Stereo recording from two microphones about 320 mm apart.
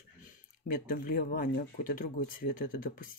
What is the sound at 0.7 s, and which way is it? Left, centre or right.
Speech, left.